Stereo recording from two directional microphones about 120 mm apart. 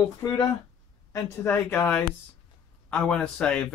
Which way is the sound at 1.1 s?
20° left (ahead or behind).